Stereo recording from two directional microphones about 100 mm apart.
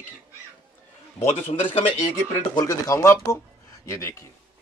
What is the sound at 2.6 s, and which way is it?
Speech, 30° left (ahead or behind).